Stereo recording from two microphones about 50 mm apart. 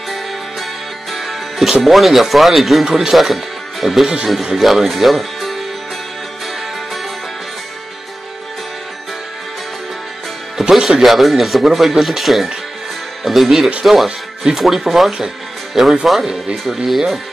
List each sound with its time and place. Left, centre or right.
1.1 s music: centre
1.8 s speech: centre
10.7 s speech: centre